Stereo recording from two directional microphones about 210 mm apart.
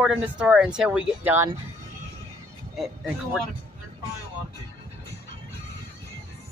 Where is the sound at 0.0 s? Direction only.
5° right (ahead or behind).